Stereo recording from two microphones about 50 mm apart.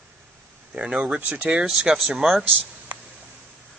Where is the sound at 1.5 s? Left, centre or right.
Centre.